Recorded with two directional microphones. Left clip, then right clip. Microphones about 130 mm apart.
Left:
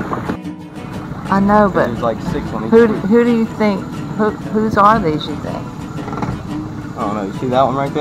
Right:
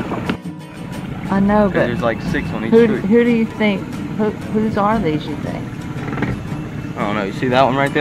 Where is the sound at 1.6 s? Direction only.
20° left (ahead or behind).